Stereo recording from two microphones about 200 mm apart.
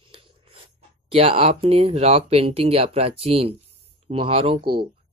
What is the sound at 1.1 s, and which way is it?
Speech, 30° right (ahead or behind).